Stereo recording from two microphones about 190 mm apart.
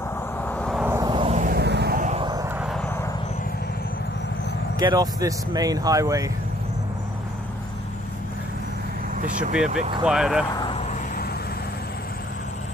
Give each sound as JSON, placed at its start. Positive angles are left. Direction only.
{"t": 0.5, "sound": "vehicle", "side_deg": 5}
{"t": 0.8, "sound": "vehicle", "side_deg": -15}
{"t": 1.1, "sound": "vehicle", "side_deg": -30}
{"t": 1.4, "sound": "vehicle", "side_deg": -55}
{"t": 2.0, "sound": "vehicle", "side_deg": -40}
{"t": 2.2, "sound": "vehicle", "side_deg": -20}
{"t": 2.6, "sound": "vehicle", "side_deg": 0}
{"t": 4.7, "sound": "speech", "side_deg": -20}
{"t": 9.2, "sound": "speech", "side_deg": -40}
{"t": 10.0, "sound": "speech", "side_deg": -5}